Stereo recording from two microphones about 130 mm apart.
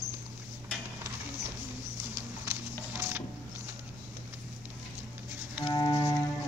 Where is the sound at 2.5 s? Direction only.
15° right (ahead or behind).